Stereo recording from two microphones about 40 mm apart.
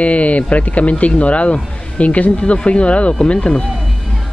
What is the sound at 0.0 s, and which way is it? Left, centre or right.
Speech, left.